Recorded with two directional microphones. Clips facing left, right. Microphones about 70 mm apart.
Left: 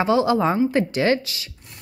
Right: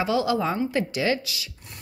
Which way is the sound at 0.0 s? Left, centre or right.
Left.